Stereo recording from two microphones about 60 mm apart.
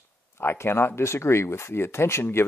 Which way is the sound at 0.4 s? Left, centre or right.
Left.